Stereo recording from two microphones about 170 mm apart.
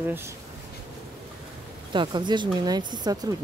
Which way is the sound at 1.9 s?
25° right (ahead or behind).